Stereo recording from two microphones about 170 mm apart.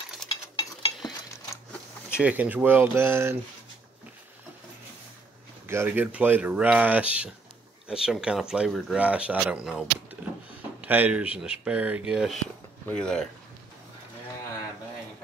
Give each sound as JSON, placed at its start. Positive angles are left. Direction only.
{"t": 0.2, "sound": "mechanisms", "side_deg": 5}
{"t": 1.3, "sound": "a sound", "side_deg": 15}
{"t": 2.1, "sound": "speech", "side_deg": -10}
{"t": 5.7, "sound": "speech", "side_deg": -15}
{"t": 12.8, "sound": "speech", "side_deg": 5}